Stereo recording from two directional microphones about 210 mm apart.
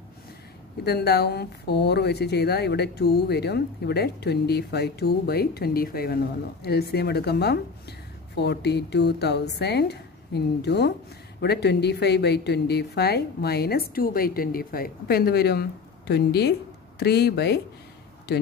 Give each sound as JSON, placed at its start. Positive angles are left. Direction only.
{"t": 0.8, "sound": "speech", "side_deg": 50}